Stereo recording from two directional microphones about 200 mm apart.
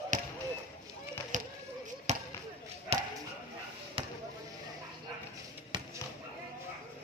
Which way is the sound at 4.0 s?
25° right (ahead or behind).